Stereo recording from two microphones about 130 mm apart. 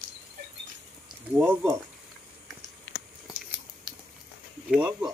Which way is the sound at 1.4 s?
15° right (ahead or behind).